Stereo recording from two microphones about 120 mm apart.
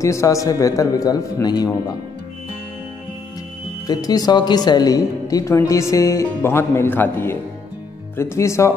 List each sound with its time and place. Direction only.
0.0 s a woman's voice: 25° left (ahead or behind)
3.8 s a woman's voice: 30° left (ahead or behind)